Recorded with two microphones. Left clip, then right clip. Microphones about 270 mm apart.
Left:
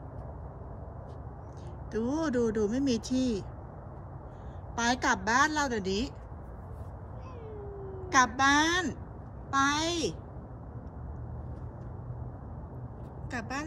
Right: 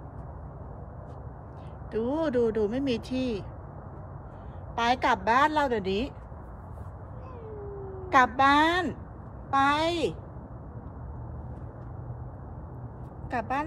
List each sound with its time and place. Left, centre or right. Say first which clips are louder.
1.9 s speech: right 3 dB; centre
4.7 s speech: right 4 dB; centre
8.4 s speech: right 3 dB; centre
13.3 s speech: right 7 dB; centre